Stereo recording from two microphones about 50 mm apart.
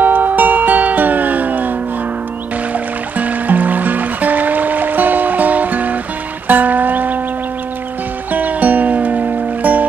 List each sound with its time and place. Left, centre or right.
0.0 s music: right
2.7 s music: right
8.3 s music: right